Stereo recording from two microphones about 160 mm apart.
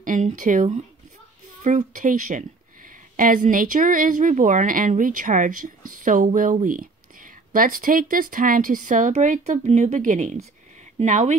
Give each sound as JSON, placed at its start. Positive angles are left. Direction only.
{"t": 0.0, "sound": "speech", "side_deg": -55}